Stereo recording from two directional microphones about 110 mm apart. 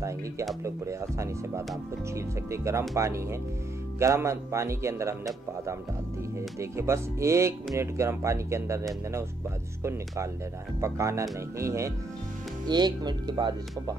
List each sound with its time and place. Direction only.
0.7 s a man's voice: 25° right (ahead or behind)
10.8 s a man's voice: 25° right (ahead or behind)
12.6 s speech: 40° right (ahead or behind)